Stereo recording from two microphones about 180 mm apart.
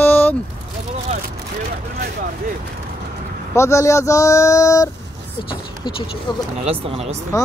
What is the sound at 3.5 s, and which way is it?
Speech, 15° left (ahead or behind).